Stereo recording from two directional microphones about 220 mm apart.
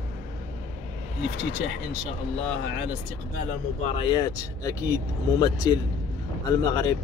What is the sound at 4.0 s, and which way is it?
Speech, 20° left (ahead or behind).